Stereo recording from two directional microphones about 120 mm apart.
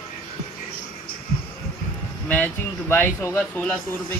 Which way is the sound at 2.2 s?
15° left (ahead or behind).